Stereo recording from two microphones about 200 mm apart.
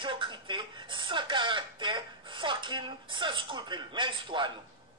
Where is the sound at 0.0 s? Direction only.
25° right (ahead or behind).